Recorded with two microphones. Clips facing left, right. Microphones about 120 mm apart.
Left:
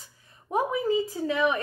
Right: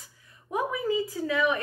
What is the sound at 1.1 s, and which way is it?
Speech, 25° left (ahead or behind).